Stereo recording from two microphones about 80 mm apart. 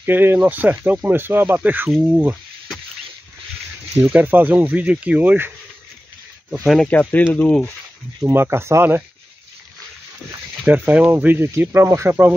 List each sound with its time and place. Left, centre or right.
0.0 s speech: right
1.9 s speech: centre
4.0 s speech: right
6.6 s speech: centre
6.9 s speech: centre
8.2 s speech: right
10.7 s speech: right